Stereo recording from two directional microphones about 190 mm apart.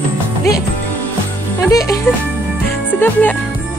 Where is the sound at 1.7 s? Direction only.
20° left (ahead or behind).